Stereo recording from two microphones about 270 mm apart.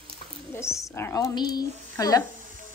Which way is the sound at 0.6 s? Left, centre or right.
Centre.